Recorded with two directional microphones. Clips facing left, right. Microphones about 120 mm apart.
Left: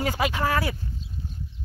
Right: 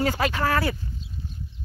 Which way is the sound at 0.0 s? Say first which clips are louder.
Right 1 dB; 15° left (ahead or behind).